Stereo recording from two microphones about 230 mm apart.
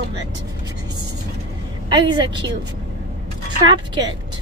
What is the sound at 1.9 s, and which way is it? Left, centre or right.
Speech, centre.